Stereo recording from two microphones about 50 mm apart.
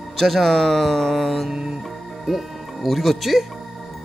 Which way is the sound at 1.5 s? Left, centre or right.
Centre.